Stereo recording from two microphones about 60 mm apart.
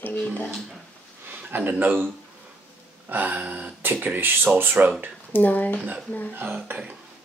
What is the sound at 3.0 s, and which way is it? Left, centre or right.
Speech, right.